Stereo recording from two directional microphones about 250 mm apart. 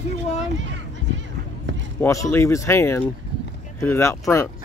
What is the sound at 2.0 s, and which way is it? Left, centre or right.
Speech, centre.